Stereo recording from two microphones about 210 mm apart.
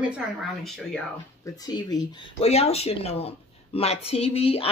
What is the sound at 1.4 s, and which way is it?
A woman's voice, 20° left (ahead or behind).